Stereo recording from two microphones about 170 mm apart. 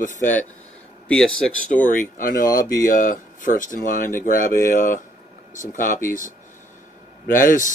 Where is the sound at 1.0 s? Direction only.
5° left (ahead or behind).